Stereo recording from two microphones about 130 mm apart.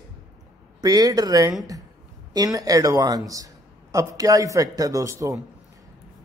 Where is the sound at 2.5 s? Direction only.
25° right (ahead or behind).